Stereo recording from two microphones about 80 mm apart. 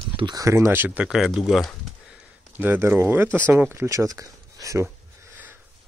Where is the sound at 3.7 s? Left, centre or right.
Right.